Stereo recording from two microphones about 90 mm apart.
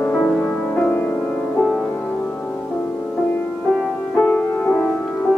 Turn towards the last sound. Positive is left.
turn(degrees=20)  # may be behind; listen again after turning